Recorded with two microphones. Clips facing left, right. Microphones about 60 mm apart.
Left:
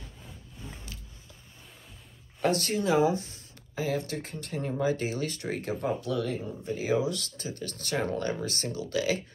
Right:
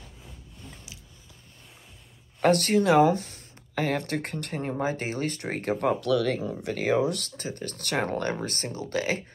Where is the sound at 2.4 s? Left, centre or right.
Right.